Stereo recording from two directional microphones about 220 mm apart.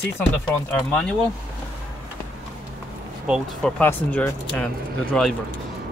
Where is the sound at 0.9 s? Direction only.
5° left (ahead or behind).